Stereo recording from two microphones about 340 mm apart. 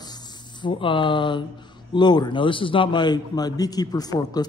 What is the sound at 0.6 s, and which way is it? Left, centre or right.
A man's voice, centre.